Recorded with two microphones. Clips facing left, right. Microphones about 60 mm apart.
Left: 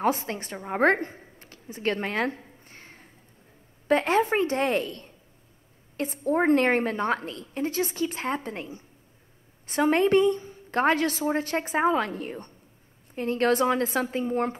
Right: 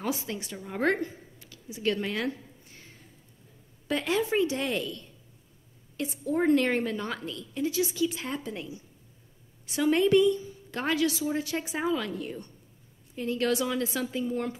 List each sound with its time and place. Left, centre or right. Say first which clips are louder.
0.0 s a woman's voice: left 6 dB; left